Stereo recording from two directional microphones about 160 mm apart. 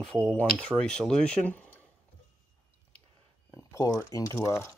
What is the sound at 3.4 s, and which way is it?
Speech, 20° left (ahead or behind).